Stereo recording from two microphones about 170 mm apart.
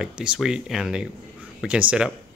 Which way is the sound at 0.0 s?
5° right (ahead or behind).